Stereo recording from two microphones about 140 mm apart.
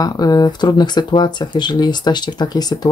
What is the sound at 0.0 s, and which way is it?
Speech, 30° left (ahead or behind).